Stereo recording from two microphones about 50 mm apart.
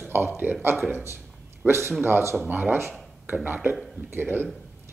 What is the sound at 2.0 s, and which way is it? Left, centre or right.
Speech, right.